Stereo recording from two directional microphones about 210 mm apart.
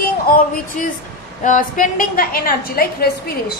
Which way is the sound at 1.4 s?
40° left (ahead or behind).